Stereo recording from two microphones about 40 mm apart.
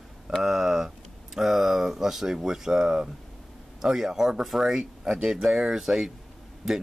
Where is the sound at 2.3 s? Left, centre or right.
Centre.